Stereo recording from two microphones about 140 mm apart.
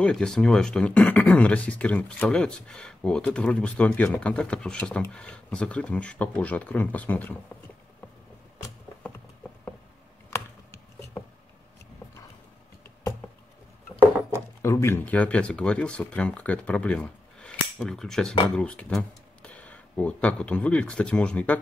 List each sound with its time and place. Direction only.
0.0 s speech: 5° left (ahead or behind)
10.3 s a sound: 20° left (ahead or behind)
14.6 s speech: 20° left (ahead or behind)